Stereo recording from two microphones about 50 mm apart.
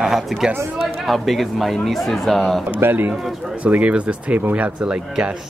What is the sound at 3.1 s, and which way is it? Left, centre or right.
Speech, centre.